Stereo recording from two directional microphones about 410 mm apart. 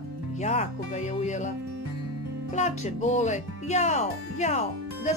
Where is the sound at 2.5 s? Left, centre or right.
Centre.